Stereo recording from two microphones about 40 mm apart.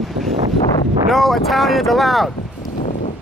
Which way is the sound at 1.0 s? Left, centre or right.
Centre.